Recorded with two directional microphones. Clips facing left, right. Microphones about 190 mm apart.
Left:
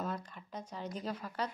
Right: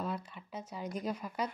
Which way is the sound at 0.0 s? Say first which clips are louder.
Right 1 dB; 5° right (ahead or behind).